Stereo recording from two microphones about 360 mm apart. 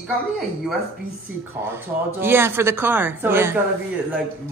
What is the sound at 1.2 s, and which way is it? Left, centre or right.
Speech, centre.